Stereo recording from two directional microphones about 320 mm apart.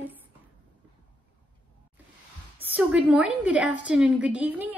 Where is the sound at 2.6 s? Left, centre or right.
Centre.